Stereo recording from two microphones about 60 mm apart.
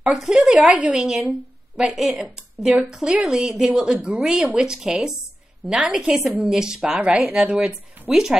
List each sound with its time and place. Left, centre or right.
0.1 s speech: centre
0.7 s a woman's voice: centre
8.1 s a woman's voice: centre